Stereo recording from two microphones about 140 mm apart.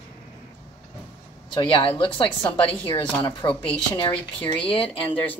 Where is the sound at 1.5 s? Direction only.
40° left (ahead or behind).